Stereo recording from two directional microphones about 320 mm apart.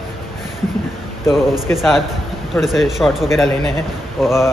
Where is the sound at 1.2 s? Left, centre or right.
Centre.